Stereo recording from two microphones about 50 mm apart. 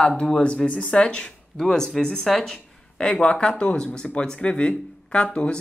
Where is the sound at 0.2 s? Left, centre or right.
Centre.